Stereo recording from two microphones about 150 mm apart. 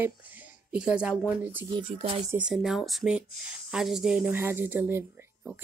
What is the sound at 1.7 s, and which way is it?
Music, 40° right (ahead or behind).